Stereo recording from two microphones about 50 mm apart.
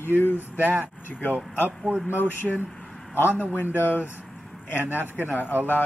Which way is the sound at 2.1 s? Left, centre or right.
Left.